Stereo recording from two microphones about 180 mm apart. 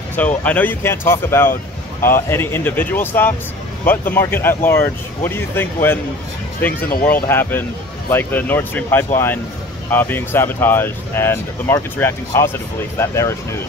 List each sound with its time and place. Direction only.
0.1 s speech: 10° left (ahead or behind)
1.5 s a sound: 50° left (ahead or behind)
2.1 s speech: 15° left (ahead or behind)
7.1 s speech: 10° left (ahead or behind)